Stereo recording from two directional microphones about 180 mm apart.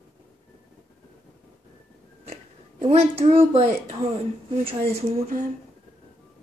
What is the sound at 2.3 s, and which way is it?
Speech, 35° right (ahead or behind).